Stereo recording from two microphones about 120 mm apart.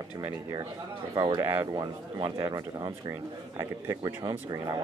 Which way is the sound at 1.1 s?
30° right (ahead or behind).